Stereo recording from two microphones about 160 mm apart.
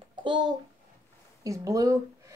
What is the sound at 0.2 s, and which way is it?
A child's voice, 30° right (ahead or behind).